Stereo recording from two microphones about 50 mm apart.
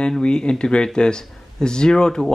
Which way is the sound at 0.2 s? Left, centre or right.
Centre.